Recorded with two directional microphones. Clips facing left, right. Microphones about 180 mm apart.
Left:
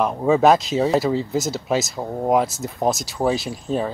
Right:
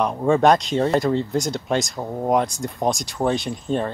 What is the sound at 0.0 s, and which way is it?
Speech, 5° left (ahead or behind).